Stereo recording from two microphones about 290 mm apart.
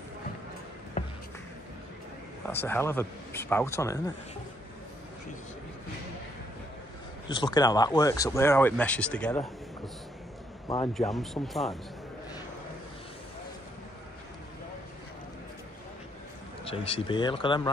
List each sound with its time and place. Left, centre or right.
1.0 s music: left
2.4 s speech: centre
7.2 s speech: centre
10.9 s speech: centre
16.6 s speech: centre